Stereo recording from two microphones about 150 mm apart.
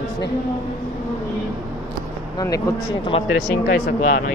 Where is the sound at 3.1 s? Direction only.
40° left (ahead or behind).